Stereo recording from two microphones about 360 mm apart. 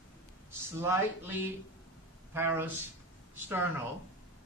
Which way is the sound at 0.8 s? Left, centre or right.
Centre.